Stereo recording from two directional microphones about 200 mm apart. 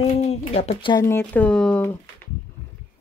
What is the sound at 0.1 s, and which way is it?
Speech, 35° left (ahead or behind).